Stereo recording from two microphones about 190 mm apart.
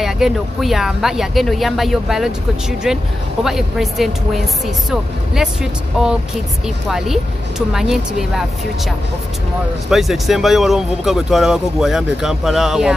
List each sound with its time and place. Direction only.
0.0 s speech: centre (ahead or behind)
3.4 s speech: centre (ahead or behind)
9.8 s speech: centre (ahead or behind)